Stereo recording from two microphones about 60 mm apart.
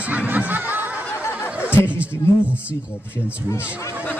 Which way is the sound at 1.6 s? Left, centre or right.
Left.